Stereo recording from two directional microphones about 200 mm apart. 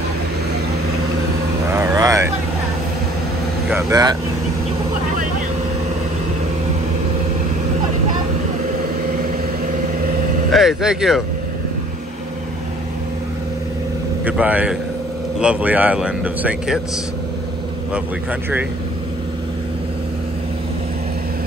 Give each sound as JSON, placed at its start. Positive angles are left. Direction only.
{"t": 1.7, "sound": "a sound", "side_deg": -15}
{"t": 3.7, "sound": "speech", "side_deg": -20}
{"t": 10.5, "sound": "speech", "side_deg": 0}
{"t": 14.2, "sound": "a man's voice", "side_deg": -5}